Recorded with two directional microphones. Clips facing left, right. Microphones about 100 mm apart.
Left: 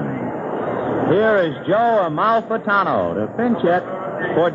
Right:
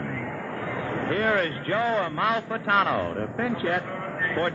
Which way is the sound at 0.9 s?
35° left (ahead or behind).